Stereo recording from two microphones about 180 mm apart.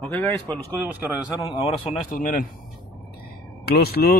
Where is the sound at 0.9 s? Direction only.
10° right (ahead or behind).